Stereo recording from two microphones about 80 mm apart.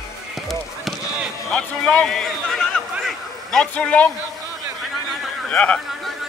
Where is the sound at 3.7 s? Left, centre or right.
Centre.